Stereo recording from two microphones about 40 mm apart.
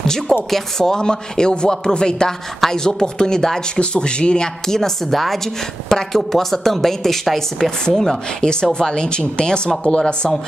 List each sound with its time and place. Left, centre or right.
0.0 s speech: centre
3.8 s speech: left